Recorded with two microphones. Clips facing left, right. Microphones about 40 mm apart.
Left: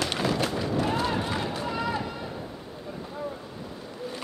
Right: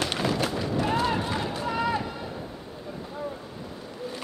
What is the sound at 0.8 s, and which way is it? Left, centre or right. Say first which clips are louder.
Run: right 4 dB; right.